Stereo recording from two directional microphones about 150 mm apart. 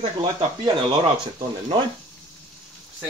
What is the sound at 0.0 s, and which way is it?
Speech, 35° right (ahead or behind).